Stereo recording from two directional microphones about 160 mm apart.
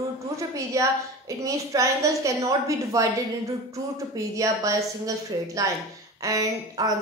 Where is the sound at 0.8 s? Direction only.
20° right (ahead or behind).